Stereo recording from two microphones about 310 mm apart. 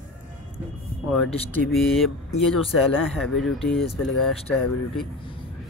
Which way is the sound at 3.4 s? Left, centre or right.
Centre.